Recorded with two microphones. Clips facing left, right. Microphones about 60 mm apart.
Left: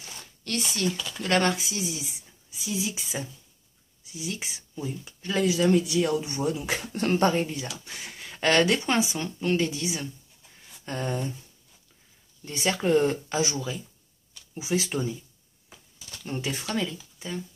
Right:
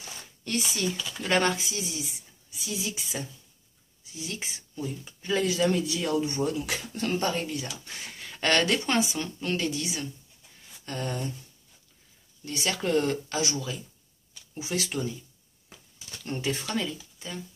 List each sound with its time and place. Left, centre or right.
0.2 s a sound: centre
0.7 s speech: centre
6.9 s speech: left
7.8 s a woman's voice: centre
12.4 s a woman's voice: left
16.3 s speech: centre